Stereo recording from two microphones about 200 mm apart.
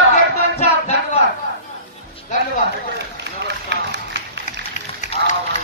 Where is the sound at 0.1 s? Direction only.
35° left (ahead or behind).